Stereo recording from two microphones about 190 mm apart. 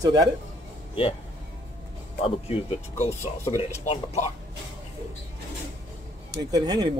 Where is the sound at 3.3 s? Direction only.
30° left (ahead or behind).